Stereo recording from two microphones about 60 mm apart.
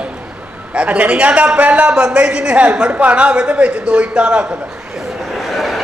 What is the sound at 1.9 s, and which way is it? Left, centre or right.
A man's voice, centre.